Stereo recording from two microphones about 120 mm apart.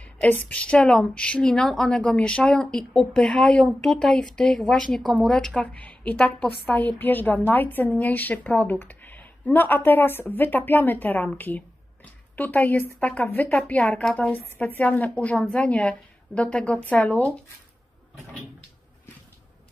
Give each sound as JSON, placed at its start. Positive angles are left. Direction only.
{"t": 0.0, "sound": "speech", "side_deg": 10}